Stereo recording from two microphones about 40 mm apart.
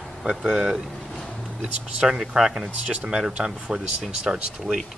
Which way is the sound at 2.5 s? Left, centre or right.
Right.